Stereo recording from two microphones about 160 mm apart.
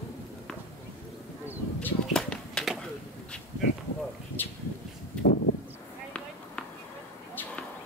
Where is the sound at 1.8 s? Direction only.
5° left (ahead or behind).